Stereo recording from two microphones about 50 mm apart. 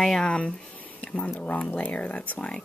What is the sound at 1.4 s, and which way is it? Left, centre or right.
Speech, left.